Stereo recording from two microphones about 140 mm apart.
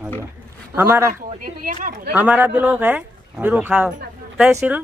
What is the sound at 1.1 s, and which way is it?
Speech, 90° right.